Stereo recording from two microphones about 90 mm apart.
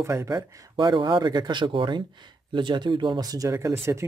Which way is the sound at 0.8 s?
55° right (ahead or behind).